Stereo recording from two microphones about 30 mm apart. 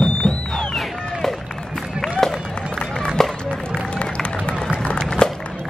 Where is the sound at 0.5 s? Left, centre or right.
Centre.